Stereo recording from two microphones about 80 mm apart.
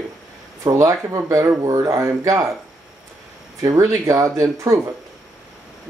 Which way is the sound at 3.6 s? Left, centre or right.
Right.